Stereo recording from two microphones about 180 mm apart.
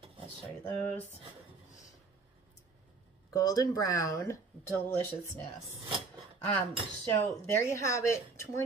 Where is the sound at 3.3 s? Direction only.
20° left (ahead or behind).